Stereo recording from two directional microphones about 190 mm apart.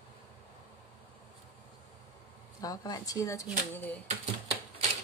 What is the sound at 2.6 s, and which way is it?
Speech, 20° left (ahead or behind).